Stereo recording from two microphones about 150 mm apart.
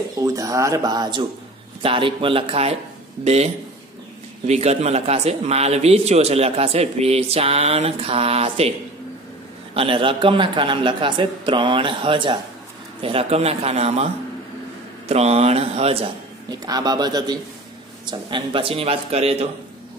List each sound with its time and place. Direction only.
0.2 s a man's voice: 20° right (ahead or behind); by 2.7 s 40° right (ahead or behind)
4.5 s speech: 45° right (ahead or behind)
9.8 s a man's voice: 35° right (ahead or behind)
15.0 s speech: 45° right (ahead or behind)
16.4 s a man's voice: 25° right (ahead or behind); by 19.4 s 45° right (ahead or behind)